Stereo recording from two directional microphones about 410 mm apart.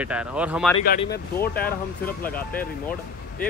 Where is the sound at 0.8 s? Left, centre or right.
Left.